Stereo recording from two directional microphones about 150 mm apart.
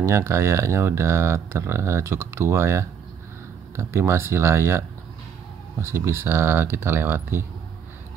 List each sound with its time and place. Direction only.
0.0 s speech: 20° right (ahead or behind)